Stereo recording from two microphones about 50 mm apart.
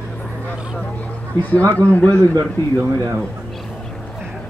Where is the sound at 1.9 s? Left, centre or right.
Left.